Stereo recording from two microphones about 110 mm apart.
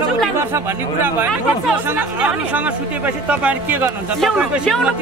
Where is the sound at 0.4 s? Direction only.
20° right (ahead or behind).